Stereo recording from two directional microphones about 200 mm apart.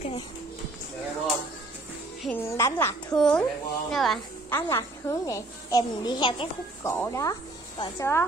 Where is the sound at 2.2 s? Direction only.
10° left (ahead or behind).